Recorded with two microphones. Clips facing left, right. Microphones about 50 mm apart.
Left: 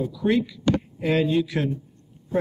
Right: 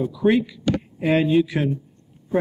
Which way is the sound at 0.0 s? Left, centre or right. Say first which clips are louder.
Right 3 dB; centre.